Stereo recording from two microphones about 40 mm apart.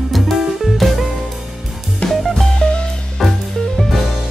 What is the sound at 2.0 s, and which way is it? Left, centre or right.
Music, left.